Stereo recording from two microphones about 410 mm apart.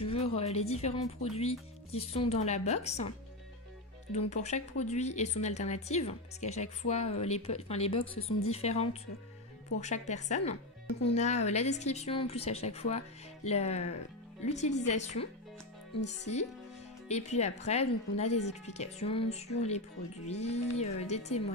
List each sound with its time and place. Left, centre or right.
0.0 s speech: centre
4.3 s speech: centre
8.2 s speech: left
8.5 s speech: centre